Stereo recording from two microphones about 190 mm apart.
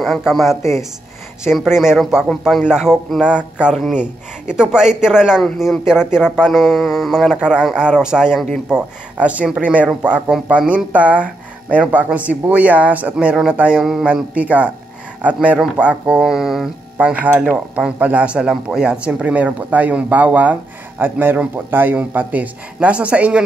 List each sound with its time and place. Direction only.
0.0 s a man's voice: centre (ahead or behind)